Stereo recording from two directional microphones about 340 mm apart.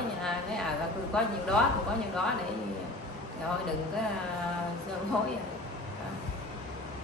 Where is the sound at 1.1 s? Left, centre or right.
Centre.